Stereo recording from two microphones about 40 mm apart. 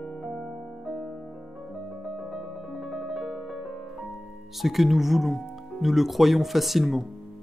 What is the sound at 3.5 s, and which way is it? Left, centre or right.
Music, centre.